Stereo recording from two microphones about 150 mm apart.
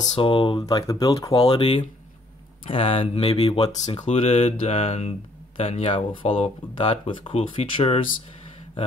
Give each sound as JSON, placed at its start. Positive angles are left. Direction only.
{"t": 0.1, "sound": "speech", "side_deg": 35}
{"t": 1.3, "sound": "speech", "side_deg": 40}